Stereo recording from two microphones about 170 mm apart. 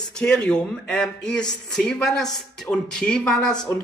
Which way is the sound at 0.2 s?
5° left (ahead or behind).